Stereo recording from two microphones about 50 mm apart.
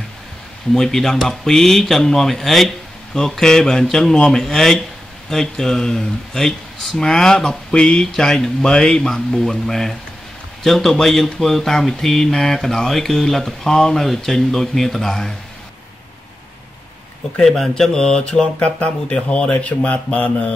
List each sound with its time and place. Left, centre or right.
0.7 s speech: centre
17.4 s speech: centre; by 20.5 s left